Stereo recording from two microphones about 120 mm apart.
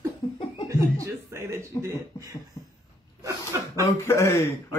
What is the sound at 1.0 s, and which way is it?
Speech, 25° right (ahead or behind).